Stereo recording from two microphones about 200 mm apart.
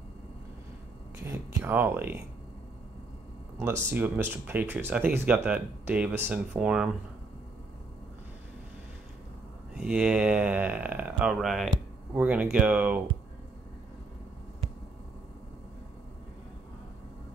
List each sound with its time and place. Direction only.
1.2 s a sound: 10° right (ahead or behind)
3.5 s speech: 10° right (ahead or behind)
9.8 s speech: 5° right (ahead or behind)